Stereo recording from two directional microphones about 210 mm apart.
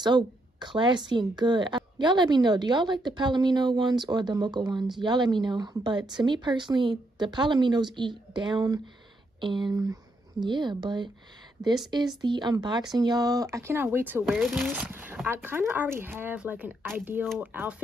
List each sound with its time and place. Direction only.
0.0 s a woman's voice: 20° right (ahead or behind)
14.2 s speech: centre (ahead or behind)